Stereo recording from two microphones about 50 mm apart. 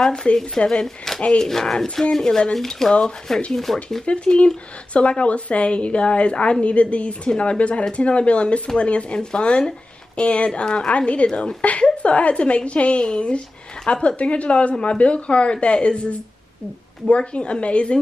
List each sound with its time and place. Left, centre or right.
0.0 s speech: centre
4.0 s speech: left